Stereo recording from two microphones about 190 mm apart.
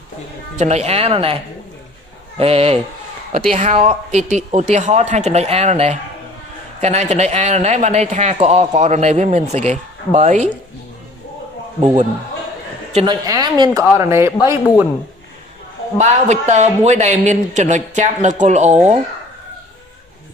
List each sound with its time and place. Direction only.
0.6 s speech: 35° right (ahead or behind)
12.9 s a woman's voice: 25° right (ahead or behind)
16.0 s speech: 35° right (ahead or behind)